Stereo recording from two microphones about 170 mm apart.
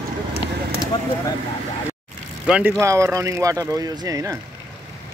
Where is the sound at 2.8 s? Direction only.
15° right (ahead or behind).